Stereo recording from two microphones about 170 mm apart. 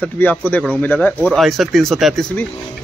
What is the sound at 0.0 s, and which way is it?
Speech, 10° left (ahead or behind).